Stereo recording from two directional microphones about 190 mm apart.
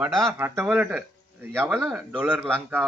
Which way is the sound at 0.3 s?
10° right (ahead or behind).